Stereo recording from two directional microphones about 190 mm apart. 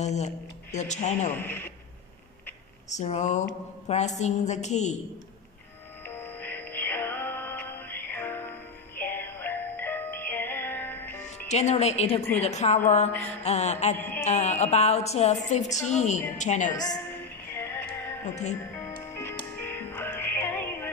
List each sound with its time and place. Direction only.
0.0 s a woman's voice: 35° left (ahead or behind)
1.3 s a man's voice: 10° left (ahead or behind)
3.0 s a woman's voice: 35° left (ahead or behind)
6.0 s music: 10° left (ahead or behind)
11.4 s a woman's voice: 35° left (ahead or behind)
13.9 s mantra: 10° left (ahead or behind)
14.2 s a woman's voice: 35° left (ahead or behind)
16.9 s female singing: 10° left (ahead or behind)
18.2 s a woman's voice: 35° left (ahead or behind)
19.6 s music: 10° left (ahead or behind)